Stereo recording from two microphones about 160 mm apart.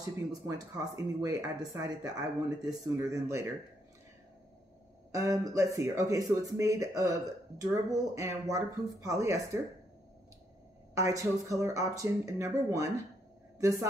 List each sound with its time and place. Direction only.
0.0 s speech: 20° right (ahead or behind)
5.1 s speech: 20° right (ahead or behind)
11.0 s speech: 20° right (ahead or behind)